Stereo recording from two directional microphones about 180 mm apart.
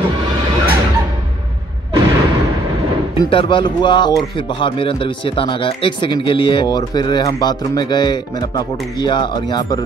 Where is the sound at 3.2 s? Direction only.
25° left (ahead or behind).